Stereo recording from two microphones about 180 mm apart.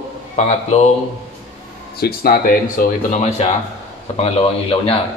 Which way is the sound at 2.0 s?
55° left (ahead or behind).